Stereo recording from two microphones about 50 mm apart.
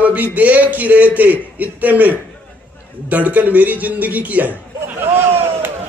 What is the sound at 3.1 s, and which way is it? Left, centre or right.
A man's voice, right.